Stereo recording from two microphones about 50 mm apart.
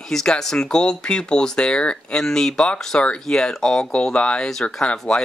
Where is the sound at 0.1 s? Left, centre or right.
Centre.